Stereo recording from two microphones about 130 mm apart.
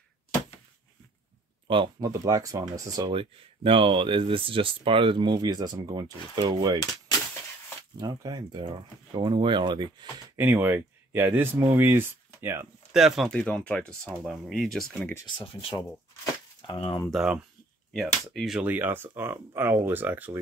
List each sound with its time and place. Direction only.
1.7 s speech: 40° right (ahead or behind)
2.0 s speech: 25° right (ahead or behind)
3.1 s speech: 45° right (ahead or behind)
8.0 s speech: 30° right (ahead or behind)
10.3 s speech: 15° right (ahead or behind)
12.9 s speech: 5° right (ahead or behind)
15.2 s speech: 40° left (ahead or behind)
17.1 s speech: 5° right (ahead or behind)